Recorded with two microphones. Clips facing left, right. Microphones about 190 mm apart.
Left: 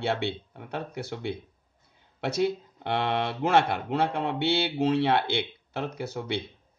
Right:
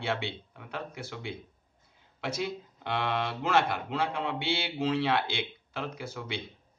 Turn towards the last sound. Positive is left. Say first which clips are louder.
# left 6 dB
turn(degrees=65)  # may be behind; listen again after turning